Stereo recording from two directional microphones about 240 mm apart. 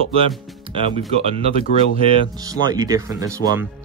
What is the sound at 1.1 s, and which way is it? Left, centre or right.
Speech, right.